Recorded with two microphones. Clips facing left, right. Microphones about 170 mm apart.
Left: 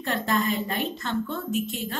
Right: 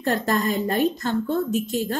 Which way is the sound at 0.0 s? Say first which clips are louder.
Right 3 dB; 40° right (ahead or behind).